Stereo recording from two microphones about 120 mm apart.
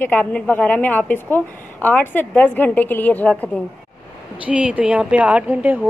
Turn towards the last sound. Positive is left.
turn(degrees=-15)  # may be behind; listen again after turning